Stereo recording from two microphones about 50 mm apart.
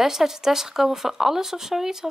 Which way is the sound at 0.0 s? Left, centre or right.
Centre.